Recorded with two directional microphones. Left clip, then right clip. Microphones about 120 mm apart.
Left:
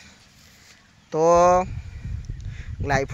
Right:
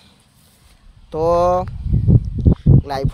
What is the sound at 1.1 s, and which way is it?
Speech, 10° right (ahead or behind).